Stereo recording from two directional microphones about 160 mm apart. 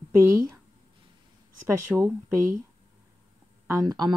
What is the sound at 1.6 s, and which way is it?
Speech, 15° right (ahead or behind).